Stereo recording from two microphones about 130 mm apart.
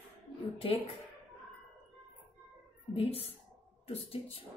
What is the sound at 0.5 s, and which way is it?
Speech, 50° left (ahead or behind).